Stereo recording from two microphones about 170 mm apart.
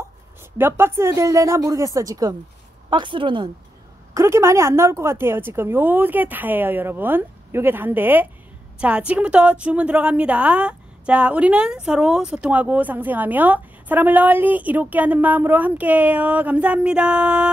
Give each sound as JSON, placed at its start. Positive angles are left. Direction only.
{"t": 0.6, "sound": "a woman's voice", "side_deg": -15}
{"t": 4.1, "sound": "a woman's voice", "side_deg": -15}